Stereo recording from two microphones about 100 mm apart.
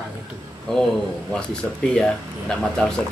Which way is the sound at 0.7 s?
5° left (ahead or behind).